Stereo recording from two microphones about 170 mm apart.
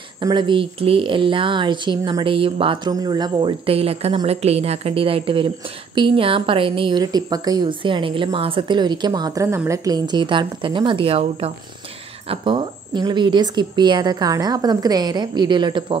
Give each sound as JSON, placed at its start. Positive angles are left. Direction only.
{"t": 0.2, "sound": "a woman's voice", "side_deg": -25}